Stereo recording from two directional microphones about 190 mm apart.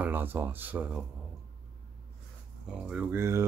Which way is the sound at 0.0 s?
10° right (ahead or behind).